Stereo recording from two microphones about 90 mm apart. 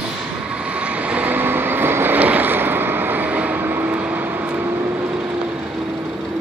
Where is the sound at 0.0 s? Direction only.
10° right (ahead or behind).